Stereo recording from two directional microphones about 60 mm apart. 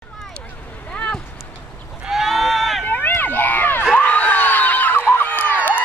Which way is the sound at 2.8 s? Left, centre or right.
Left.